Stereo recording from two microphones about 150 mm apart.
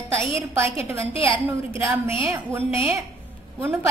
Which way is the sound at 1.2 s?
15° right (ahead or behind).